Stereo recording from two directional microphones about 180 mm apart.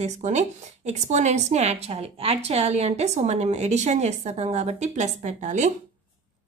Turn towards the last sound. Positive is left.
turn(degrees=-40)  # may be behind; listen again after turning